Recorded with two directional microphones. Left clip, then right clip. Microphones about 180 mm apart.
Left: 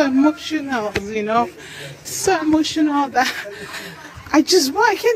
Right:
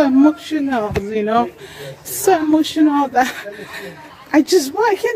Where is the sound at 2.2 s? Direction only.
30° right (ahead or behind).